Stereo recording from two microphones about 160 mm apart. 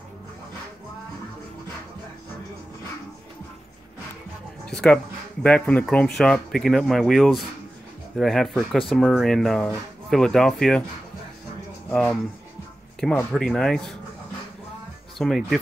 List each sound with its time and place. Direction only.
4.6 s speech: 5° left (ahead or behind)
11.9 s speech: 5° left (ahead or behind)
15.1 s speech: centre (ahead or behind)